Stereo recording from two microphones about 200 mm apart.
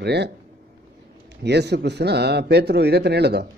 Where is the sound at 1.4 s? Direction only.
55° right (ahead or behind).